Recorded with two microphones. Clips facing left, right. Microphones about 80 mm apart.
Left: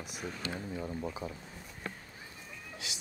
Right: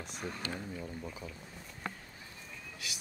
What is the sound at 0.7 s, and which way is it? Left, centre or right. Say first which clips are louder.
Speech: left 5 dB; left.